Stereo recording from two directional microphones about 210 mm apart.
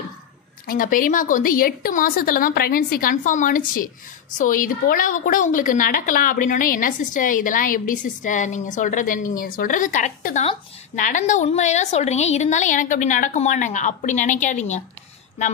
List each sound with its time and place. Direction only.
0.7 s a woman's voice: 40° left (ahead or behind)